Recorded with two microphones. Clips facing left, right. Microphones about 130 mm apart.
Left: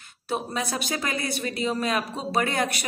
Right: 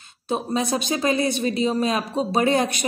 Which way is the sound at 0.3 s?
20° right (ahead or behind).